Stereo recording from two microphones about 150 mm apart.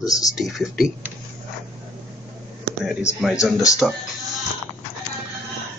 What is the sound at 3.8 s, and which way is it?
Speech, 5° left (ahead or behind).